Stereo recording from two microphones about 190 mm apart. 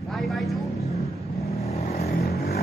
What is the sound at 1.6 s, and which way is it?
Vehicle, 35° left (ahead or behind).